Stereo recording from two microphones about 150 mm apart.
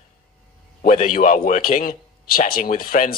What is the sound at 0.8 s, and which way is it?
A man's voice, 60° left (ahead or behind).